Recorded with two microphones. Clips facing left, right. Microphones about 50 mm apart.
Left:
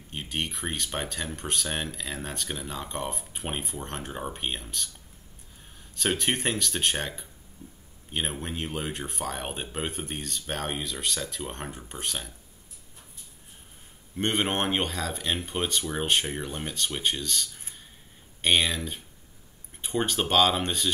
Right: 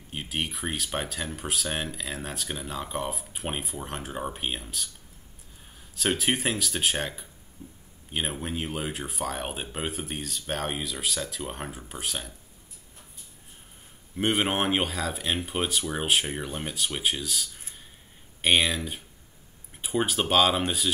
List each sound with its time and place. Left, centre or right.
0.1 s speech: centre
5.9 s speech: centre
7.6 s speech: right
8.1 s speech: centre
14.1 s speech: centre